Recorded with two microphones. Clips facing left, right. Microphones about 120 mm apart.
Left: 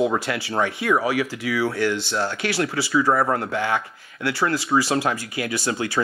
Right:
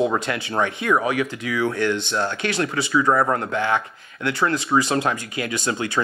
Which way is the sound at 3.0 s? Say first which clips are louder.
Right 1 dB; 50° right (ahead or behind).